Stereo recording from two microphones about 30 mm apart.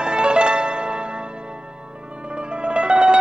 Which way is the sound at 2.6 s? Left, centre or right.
Right.